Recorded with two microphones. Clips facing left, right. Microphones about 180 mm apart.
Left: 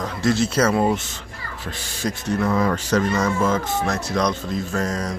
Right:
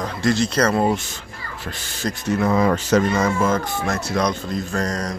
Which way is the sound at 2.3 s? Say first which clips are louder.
Right 3 dB; 15° right (ahead or behind).